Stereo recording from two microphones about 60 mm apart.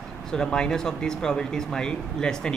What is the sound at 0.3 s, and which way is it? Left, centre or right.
Speech, centre.